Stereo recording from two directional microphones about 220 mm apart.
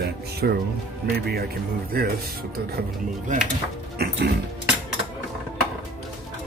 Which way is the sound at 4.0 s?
45° right (ahead or behind).